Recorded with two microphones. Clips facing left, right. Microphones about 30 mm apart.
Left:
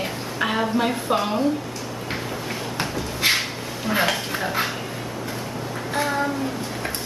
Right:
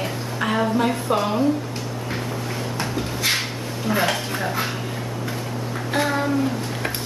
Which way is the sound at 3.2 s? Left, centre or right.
Left.